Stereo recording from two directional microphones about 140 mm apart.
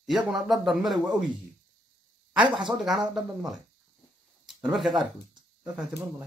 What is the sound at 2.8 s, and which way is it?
Speech, centre (ahead or behind).